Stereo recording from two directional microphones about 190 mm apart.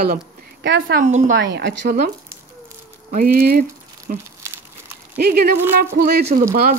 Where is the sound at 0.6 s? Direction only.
75° right (ahead or behind).